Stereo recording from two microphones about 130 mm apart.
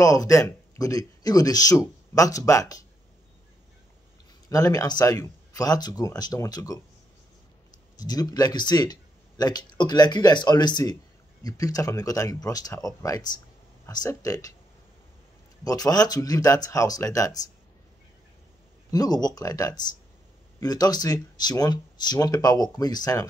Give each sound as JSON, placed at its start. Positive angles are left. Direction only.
{"t": 0.0, "sound": "speech", "side_deg": 25}
{"t": 4.5, "sound": "speech", "side_deg": 25}
{"t": 8.0, "sound": "speech", "side_deg": 30}
{"t": 15.6, "sound": "speech", "side_deg": 30}
{"t": 18.9, "sound": "speech", "side_deg": 30}